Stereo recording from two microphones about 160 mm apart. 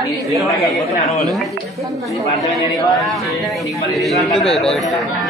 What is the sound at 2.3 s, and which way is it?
A man's voice, centre (ahead or behind).